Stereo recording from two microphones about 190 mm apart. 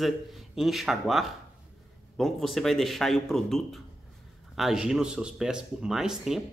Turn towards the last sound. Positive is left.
turn(degrees=0)  # may be behind; listen again after turning